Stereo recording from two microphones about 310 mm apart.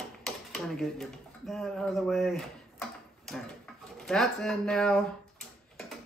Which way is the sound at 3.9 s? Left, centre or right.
Centre.